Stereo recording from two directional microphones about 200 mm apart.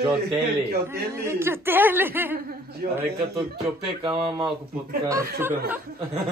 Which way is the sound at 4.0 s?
25° right (ahead or behind).